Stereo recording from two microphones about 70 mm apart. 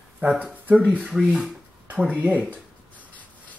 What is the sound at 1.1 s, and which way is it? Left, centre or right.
Speech, centre.